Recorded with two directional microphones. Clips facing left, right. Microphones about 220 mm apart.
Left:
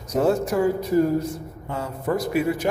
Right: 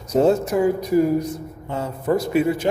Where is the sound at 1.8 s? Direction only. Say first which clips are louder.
Right 3 dB; 25° right (ahead or behind).